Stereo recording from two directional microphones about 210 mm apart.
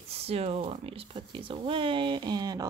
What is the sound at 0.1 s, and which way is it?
Speech, 30° right (ahead or behind).